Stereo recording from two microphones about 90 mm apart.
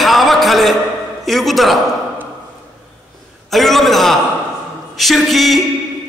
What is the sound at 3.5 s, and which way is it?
A man's voice, centre (ahead or behind).